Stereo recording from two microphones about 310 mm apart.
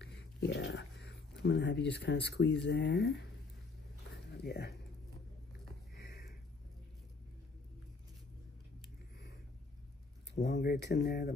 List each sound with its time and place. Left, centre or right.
0.0 s whispering: left
1.4 s speech: left
4.4 s speech: left
5.9 s a sound: left
10.4 s speech: left